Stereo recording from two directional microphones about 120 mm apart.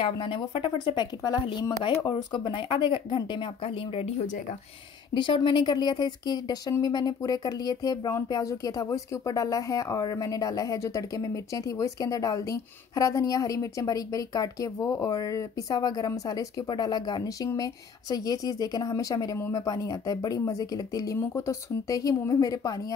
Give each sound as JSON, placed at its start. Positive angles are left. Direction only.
{"t": 0.0, "sound": "speech", "side_deg": 45}
{"t": 4.0, "sound": "speech", "side_deg": 65}
{"t": 5.1, "sound": "speech", "side_deg": 40}